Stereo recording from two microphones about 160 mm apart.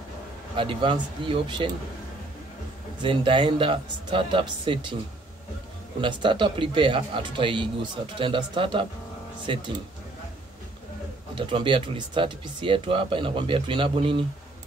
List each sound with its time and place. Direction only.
0.6 s speech: 30° right (ahead or behind)
3.0 s speech: 30° right (ahead or behind)
5.9 s speech: 30° right (ahead or behind)
11.3 s speech: 30° right (ahead or behind)